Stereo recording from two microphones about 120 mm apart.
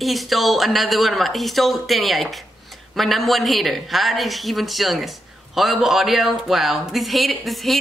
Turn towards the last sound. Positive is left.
turn(degrees=0)  # may be behind; listen again after turning